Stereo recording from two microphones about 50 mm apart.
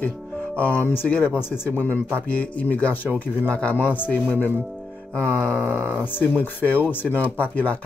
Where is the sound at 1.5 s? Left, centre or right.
Left.